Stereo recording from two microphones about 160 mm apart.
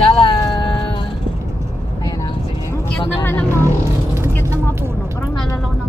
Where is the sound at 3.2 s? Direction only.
15° left (ahead or behind).